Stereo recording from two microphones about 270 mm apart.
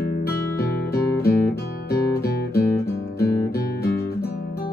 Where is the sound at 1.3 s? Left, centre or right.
Left.